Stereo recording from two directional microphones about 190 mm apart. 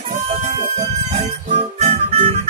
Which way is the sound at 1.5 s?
35° right (ahead or behind).